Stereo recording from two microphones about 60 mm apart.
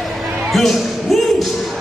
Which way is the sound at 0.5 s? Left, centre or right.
Centre.